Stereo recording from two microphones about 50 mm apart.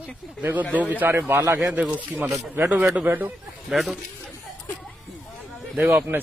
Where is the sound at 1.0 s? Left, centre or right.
Right.